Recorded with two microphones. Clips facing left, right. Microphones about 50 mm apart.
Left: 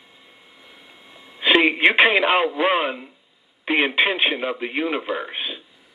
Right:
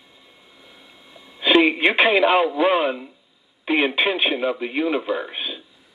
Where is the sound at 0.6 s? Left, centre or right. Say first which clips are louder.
Left 1 dB; centre.